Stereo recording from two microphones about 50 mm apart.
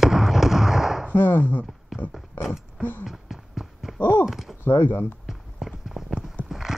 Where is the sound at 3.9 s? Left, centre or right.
Left.